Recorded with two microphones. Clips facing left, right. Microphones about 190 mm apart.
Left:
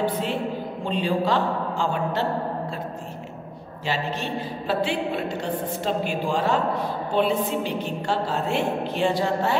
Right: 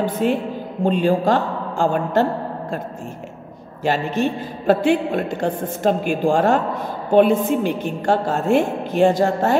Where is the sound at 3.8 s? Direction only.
50° right (ahead or behind).